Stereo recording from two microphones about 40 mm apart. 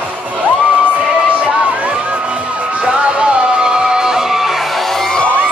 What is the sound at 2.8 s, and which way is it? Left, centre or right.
Music, right.